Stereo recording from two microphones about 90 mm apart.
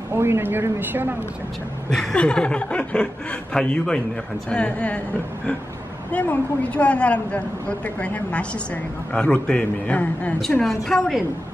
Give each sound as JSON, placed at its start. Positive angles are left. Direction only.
{"t": 0.1, "sound": "speech", "side_deg": -25}
{"t": 1.9, "sound": "a woman's voice", "side_deg": 10}
{"t": 6.1, "sound": "a woman's voice", "side_deg": 15}
{"t": 10.6, "sound": "a woman's voice", "side_deg": 0}